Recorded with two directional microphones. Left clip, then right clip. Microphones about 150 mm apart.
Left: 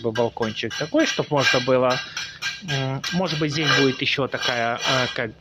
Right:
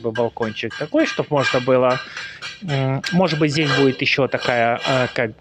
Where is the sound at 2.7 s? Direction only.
40° right (ahead or behind).